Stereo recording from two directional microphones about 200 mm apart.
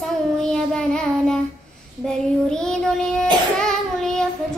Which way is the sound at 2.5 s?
5° left (ahead or behind).